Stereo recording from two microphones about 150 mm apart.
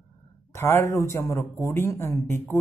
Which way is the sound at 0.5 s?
15° left (ahead or behind).